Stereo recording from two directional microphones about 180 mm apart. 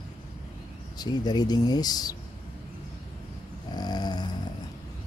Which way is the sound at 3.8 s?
20° left (ahead or behind).